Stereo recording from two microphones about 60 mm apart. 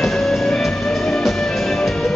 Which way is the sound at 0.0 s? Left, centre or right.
Centre.